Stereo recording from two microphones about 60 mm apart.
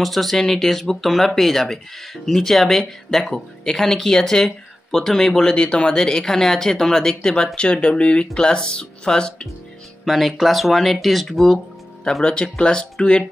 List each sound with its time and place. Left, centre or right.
0.0 s speech: centre
10.0 s speech: centre
12.0 s speech: centre